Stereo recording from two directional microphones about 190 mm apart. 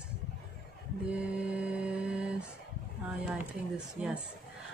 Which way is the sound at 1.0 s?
5° right (ahead or behind).